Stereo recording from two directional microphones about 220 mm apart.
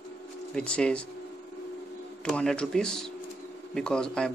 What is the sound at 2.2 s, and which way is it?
Speech, 5° left (ahead or behind).